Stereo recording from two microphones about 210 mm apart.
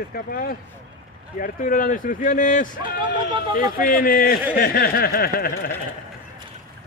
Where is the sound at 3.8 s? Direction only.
40° left (ahead or behind).